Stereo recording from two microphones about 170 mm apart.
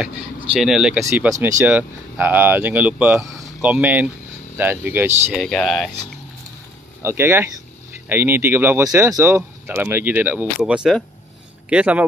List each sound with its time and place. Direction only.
0.0 s speech: 5° right (ahead or behind)
1.0 s speech: 15° right (ahead or behind)
5.3 s speech: centre (ahead or behind)
7.0 s speech: 15° right (ahead or behind)